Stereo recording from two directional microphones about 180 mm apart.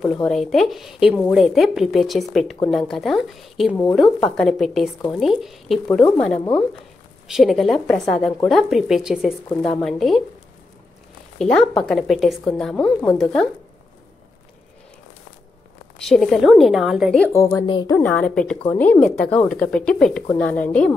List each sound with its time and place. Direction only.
0.0 s speech: 5° left (ahead or behind)
11.3 s speech: 5° left (ahead or behind)
16.0 s speech: centre (ahead or behind)
17.3 s speech: 15° left (ahead or behind)
17.9 s speech: 5° left (ahead or behind)